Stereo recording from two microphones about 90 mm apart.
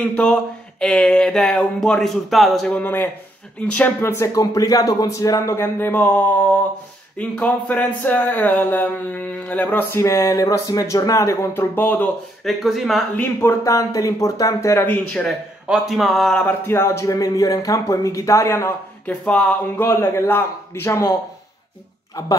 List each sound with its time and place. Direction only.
0.0 s speech: 10° left (ahead or behind)
2.7 s speech: 20° left (ahead or behind)
4.4 s speech: 45° left (ahead or behind)
5.4 s speech: 25° left (ahead or behind)
11.7 s speech: 20° left (ahead or behind)
12.4 s a man's voice: centre (ahead or behind)
13.1 s speech: 20° left (ahead or behind)
13.5 s speech: 35° left (ahead or behind)
15.6 s a man's voice: 5° right (ahead or behind)
16.6 s speech: 30° left (ahead or behind)
19.0 s speech: 15° left (ahead or behind)
19.8 s speech: 25° left (ahead or behind)